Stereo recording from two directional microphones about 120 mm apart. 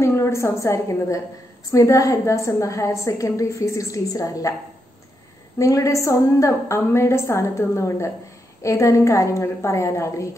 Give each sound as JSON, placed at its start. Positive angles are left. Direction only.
{"t": 0.0, "sound": "a woman's voice", "side_deg": 25}
{"t": 5.6, "sound": "a woman's voice", "side_deg": 25}